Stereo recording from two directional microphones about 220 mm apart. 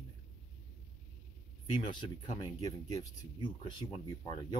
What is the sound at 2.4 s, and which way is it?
Speech, 15° left (ahead or behind).